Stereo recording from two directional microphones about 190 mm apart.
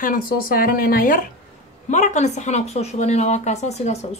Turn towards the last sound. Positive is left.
turn(degrees=35)  # may be behind; listen again after turning